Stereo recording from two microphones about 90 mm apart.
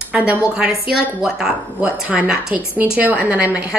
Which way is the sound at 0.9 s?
5° right (ahead or behind).